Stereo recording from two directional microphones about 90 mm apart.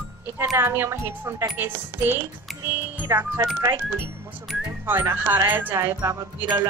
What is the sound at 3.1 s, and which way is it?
Music, 30° right (ahead or behind).